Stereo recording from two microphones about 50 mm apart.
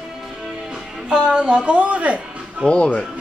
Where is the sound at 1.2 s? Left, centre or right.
Right.